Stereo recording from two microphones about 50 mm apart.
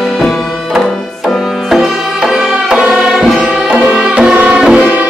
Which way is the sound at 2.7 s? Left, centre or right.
Centre.